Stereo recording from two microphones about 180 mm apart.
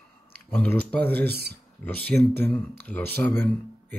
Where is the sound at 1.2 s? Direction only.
65° right (ahead or behind).